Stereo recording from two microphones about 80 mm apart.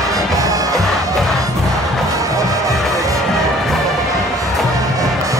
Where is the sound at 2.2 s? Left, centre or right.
Right.